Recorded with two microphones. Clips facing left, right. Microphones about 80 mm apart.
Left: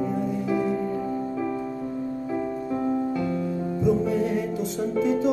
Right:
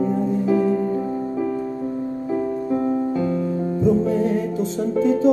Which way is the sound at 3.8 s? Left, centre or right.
Right.